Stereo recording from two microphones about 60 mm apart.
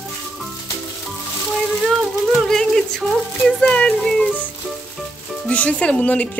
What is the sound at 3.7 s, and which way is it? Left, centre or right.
Speech, centre.